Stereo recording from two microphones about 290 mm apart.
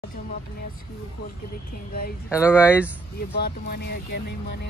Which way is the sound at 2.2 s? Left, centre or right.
Centre.